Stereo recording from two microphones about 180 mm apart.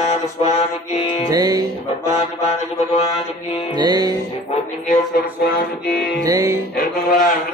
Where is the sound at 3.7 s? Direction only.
25° right (ahead or behind).